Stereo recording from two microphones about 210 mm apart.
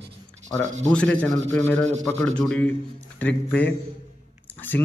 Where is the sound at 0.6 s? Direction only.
35° right (ahead or behind).